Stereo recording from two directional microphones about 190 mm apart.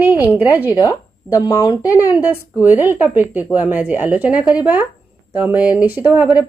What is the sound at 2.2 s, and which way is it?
Speech, 10° right (ahead or behind).